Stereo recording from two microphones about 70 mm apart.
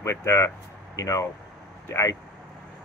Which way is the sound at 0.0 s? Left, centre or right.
Left.